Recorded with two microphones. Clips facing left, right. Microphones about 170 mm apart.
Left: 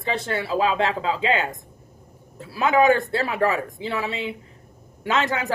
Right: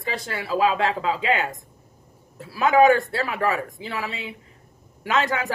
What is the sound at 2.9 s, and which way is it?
Speech, 30° left (ahead or behind).